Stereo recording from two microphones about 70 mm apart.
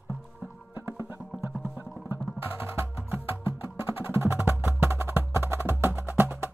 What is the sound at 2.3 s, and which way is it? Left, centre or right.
Music, right.